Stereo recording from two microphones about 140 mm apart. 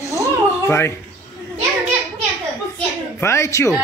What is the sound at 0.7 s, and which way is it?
Speech, 20° left (ahead or behind).